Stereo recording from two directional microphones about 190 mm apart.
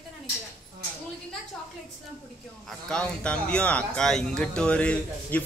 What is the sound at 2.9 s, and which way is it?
Speech, 5° left (ahead or behind).